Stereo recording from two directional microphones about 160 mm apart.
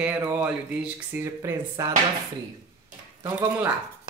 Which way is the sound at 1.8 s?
20° right (ahead or behind).